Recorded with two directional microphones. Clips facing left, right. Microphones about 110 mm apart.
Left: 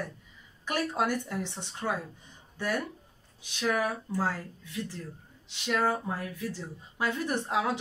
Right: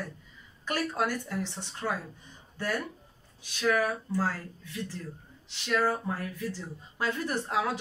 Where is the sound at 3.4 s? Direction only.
15° left (ahead or behind).